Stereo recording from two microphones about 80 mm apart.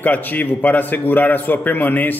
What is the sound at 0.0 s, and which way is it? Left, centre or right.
A man's voice, left.